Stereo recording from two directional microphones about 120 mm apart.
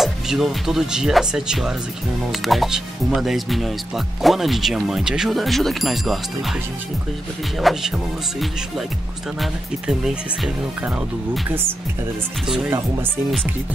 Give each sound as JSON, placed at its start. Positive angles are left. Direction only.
{"t": 0.0, "sound": "speech", "side_deg": 0}
{"t": 12.6, "sound": "speech", "side_deg": -20}